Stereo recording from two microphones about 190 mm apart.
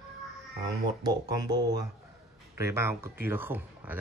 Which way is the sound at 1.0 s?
20° right (ahead or behind).